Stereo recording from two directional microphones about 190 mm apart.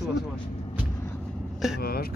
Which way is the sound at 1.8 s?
55° left (ahead or behind).